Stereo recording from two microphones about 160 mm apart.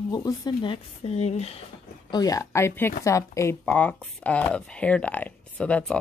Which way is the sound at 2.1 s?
25° left (ahead or behind).